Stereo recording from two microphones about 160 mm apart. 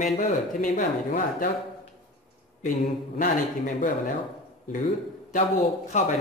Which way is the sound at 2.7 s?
55° left (ahead or behind).